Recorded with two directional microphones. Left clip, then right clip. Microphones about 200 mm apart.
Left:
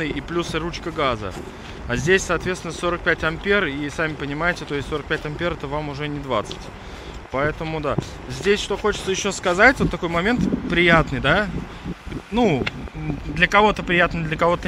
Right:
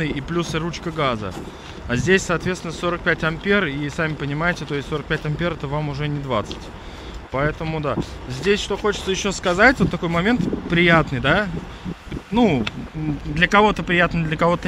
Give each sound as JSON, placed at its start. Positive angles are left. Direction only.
{"t": 0.0, "sound": "speech", "side_deg": -15}